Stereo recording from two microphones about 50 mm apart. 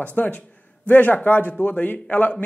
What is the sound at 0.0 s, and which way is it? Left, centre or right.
A man's voice, left.